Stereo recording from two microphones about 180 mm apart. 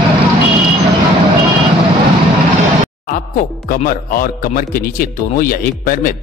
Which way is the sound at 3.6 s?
50° left (ahead or behind).